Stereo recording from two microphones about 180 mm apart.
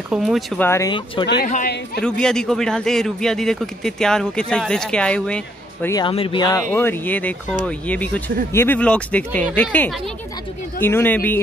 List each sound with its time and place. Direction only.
0.1 s speech: centre (ahead or behind)
0.6 s speech: 15° left (ahead or behind)
1.2 s a man's voice: 75° left (ahead or behind)
2.0 s speech: 5° left (ahead or behind)
5.9 s speech: 30° left (ahead or behind); by 11.4 s 10° left (ahead or behind)